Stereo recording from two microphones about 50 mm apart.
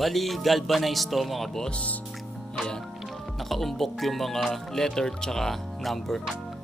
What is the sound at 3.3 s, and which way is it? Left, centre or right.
Speech, centre.